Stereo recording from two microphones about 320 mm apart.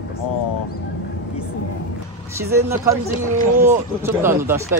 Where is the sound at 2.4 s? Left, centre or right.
Centre.